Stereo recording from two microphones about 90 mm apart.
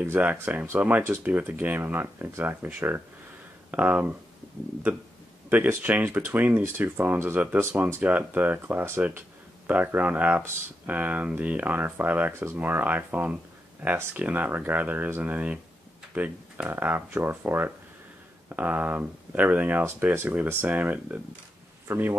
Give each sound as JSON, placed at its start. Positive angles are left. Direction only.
{"t": 0.0, "sound": "speech", "side_deg": -20}
{"t": 5.8, "sound": "speech", "side_deg": -20}